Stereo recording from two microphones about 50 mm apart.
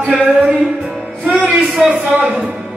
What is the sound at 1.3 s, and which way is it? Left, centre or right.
Speech, centre.